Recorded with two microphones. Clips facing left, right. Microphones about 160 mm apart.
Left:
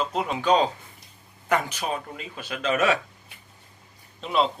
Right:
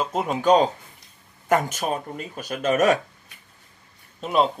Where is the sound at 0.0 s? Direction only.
45° right (ahead or behind).